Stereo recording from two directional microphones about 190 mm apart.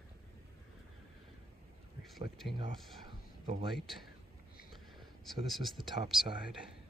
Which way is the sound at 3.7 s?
Centre (ahead or behind).